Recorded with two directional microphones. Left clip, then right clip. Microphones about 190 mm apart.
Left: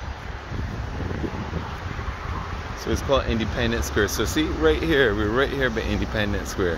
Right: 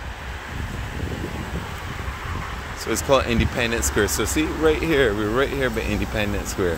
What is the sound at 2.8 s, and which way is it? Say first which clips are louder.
Speech: right 3 dB; 20° right (ahead or behind).